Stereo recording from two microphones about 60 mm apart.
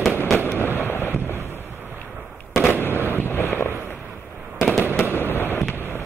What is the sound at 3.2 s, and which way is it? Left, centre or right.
Wind noise, left.